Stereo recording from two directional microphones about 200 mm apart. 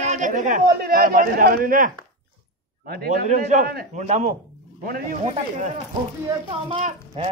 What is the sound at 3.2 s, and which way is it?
A man's voice, 40° right (ahead or behind).